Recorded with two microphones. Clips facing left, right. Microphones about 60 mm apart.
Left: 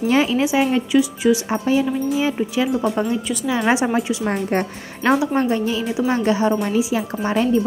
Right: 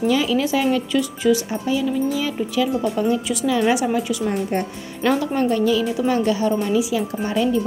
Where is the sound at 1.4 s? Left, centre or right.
Left.